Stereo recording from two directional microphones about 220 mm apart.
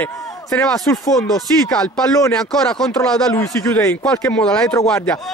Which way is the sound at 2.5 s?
Centre (ahead or behind).